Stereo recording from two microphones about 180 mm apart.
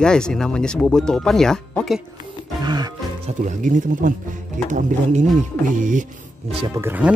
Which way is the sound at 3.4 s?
45° right (ahead or behind).